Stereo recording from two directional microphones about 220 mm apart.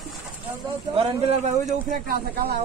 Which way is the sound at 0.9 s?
30° right (ahead or behind).